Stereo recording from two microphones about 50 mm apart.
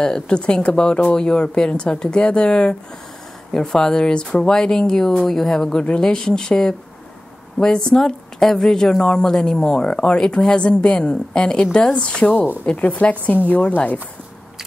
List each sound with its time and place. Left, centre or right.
0.0 s a woman's voice: centre
13.5 s speech: left